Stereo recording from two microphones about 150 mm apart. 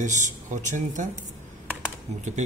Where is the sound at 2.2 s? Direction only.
50° right (ahead or behind).